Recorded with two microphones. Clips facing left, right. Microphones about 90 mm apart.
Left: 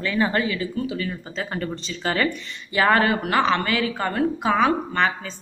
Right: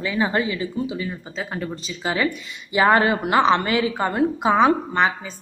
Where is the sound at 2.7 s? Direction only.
20° right (ahead or behind).